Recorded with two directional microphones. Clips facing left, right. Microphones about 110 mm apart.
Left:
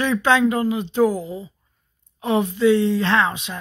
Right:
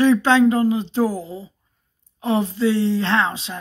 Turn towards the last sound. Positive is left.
turn(degrees=-25)  # may be behind; listen again after turning